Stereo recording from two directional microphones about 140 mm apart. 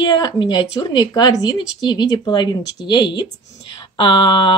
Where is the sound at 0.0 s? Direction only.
30° left (ahead or behind).